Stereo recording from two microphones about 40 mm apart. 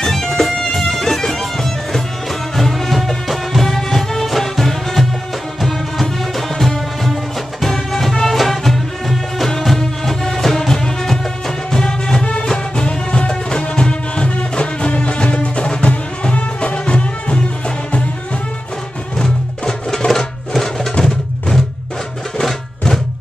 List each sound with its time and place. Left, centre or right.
0.0 s music: centre; by 15.9 s left
15.9 s music: left
19.1 s music: centre